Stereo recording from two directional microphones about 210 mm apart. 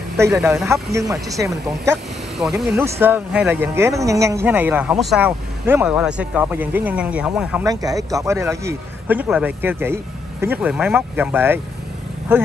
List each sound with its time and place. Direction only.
0.2 s speech: 10° right (ahead or behind)
2.3 s speech: centre (ahead or behind)
7.6 s speech: 15° right (ahead or behind)